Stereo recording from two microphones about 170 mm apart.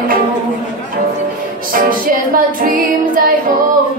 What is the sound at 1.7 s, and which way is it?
Music, 55° right (ahead or behind).